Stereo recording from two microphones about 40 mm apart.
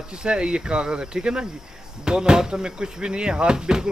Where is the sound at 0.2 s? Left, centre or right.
Right.